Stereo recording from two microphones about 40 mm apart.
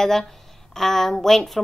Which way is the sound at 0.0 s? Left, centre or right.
Centre.